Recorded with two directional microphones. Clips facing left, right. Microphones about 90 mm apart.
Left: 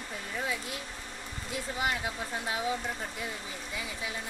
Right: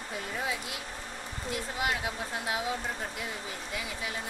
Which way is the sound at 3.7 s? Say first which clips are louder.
Right 1 dB; centre (ahead or behind).